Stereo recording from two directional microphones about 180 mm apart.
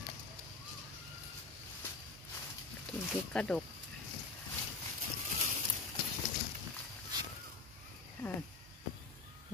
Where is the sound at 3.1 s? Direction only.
5° left (ahead or behind).